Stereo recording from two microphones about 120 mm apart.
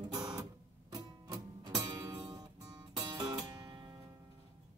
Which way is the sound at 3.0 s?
35° right (ahead or behind).